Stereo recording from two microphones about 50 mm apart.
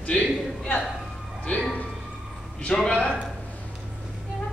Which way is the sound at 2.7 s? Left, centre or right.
Centre.